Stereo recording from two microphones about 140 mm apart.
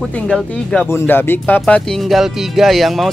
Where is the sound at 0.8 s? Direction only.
15° left (ahead or behind).